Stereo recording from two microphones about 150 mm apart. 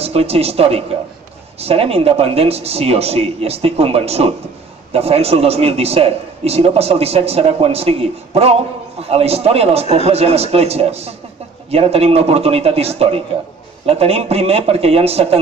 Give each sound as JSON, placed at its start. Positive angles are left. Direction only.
{"t": 0.0, "sound": "a man's voice", "side_deg": -40}